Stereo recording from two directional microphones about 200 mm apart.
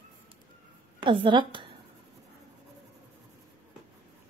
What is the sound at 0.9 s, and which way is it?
Speech, 25° right (ahead or behind).